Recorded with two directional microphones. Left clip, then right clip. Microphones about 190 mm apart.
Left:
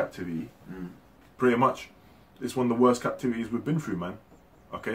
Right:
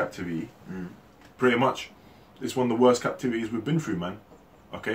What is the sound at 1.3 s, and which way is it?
Speech, 20° left (ahead or behind).